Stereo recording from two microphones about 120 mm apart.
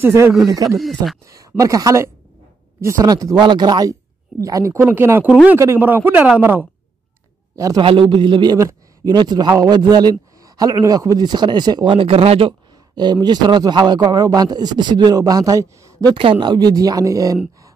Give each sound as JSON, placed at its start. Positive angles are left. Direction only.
{"t": 0.0, "sound": "speech", "side_deg": -25}
{"t": 0.7, "sound": "speech", "side_deg": 0}
{"t": 1.2, "sound": "a man's voice", "side_deg": -30}
{"t": 5.6, "sound": "speech", "side_deg": -20}
{"t": 7.5, "sound": "a man's voice", "side_deg": -30}
{"t": 7.8, "sound": "a man's voice", "side_deg": -45}
{"t": 12.9, "sound": "a man's voice", "side_deg": -35}
{"t": 16.2, "sound": "a man's voice", "side_deg": -45}